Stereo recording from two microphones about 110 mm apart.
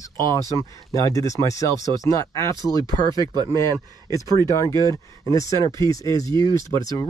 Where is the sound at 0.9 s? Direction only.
30° left (ahead or behind).